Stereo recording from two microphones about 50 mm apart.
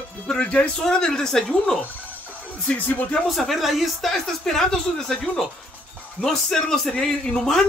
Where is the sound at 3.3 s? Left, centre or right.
Centre.